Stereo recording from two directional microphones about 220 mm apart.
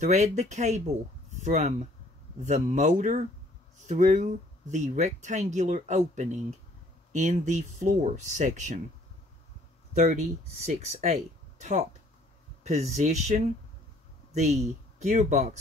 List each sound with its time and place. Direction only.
0.0 s speech: 35° right (ahead or behind)
9.9 s speech: 30° right (ahead or behind)